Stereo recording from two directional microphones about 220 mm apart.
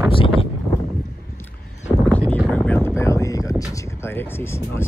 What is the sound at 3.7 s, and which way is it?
Speech, 10° left (ahead or behind).